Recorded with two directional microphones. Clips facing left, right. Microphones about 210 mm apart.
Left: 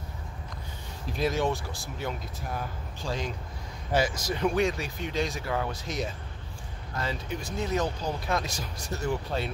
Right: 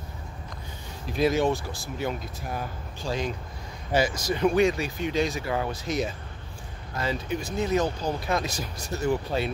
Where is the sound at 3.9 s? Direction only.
Centre (ahead or behind).